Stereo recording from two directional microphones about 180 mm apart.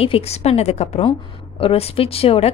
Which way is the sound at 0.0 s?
35° left (ahead or behind).